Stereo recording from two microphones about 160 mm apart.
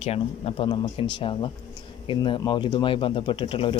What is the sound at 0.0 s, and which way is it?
Speech, 40° left (ahead or behind).